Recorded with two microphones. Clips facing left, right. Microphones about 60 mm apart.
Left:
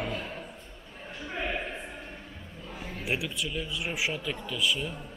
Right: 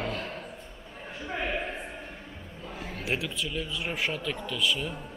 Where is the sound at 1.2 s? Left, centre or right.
Centre.